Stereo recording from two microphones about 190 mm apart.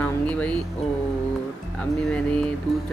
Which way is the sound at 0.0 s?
5° left (ahead or behind).